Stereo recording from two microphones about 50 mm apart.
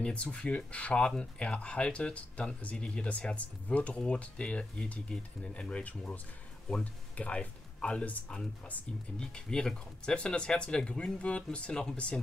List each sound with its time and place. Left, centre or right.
0.0 s speech: left
9.2 s speech: centre